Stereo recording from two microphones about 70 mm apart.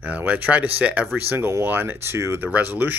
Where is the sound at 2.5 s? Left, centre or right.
Right.